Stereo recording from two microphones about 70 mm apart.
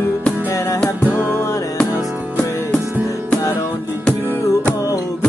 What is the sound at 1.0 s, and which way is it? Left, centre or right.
Music, left.